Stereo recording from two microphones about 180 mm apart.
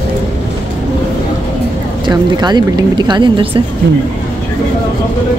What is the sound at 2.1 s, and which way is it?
A woman's voice, 25° right (ahead or behind).